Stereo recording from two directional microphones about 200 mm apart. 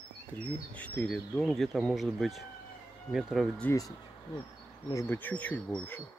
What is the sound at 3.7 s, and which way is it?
Speech, 15° left (ahead or behind).